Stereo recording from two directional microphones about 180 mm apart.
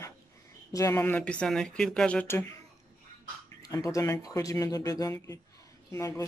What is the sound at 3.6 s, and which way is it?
Speech, 20° left (ahead or behind).